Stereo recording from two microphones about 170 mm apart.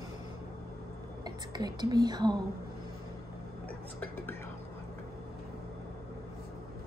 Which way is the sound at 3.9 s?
10° left (ahead or behind).